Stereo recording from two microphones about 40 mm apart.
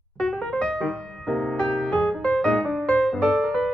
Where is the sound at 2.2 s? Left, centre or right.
Left.